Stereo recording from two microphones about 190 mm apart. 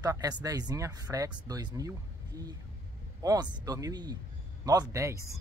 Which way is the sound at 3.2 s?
20° right (ahead or behind).